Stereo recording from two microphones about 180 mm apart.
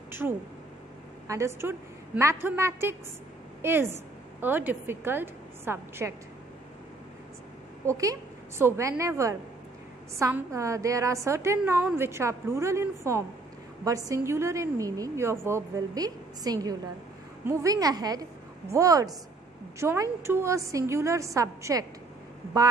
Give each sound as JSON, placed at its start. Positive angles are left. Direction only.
{"t": 0.2, "sound": "speech", "side_deg": -5}
{"t": 1.2, "sound": "a woman's voice", "side_deg": -15}
{"t": 7.8, "sound": "a woman's voice", "side_deg": -15}